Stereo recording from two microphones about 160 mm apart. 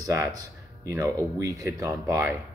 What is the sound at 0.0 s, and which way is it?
Speech, 20° right (ahead or behind).